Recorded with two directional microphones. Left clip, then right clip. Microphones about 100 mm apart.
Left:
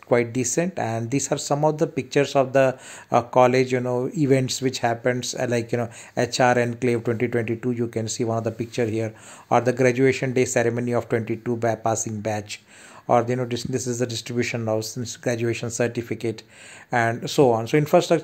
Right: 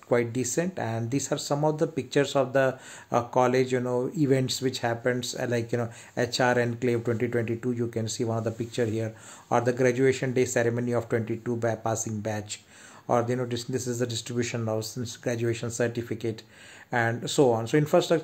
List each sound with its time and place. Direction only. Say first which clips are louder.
0.1 s speech: left 5 dB; 30° left (ahead or behind)